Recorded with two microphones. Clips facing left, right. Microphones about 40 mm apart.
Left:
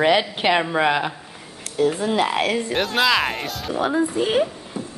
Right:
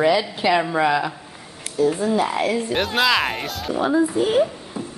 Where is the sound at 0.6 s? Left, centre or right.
Left.